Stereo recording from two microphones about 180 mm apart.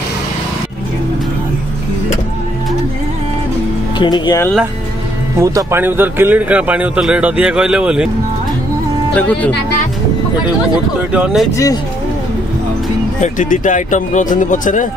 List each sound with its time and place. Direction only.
4.0 s speech: 25° left (ahead or behind)
5.4 s speech: 15° right (ahead or behind)
9.1 s speech: 5° left (ahead or behind)
11.1 s speech: 5° right (ahead or behind)
11.5 s speech: 20° left (ahead or behind)
13.2 s speech: 45° left (ahead or behind)